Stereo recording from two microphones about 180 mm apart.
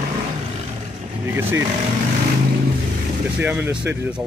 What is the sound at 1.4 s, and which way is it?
Speech, 10° right (ahead or behind).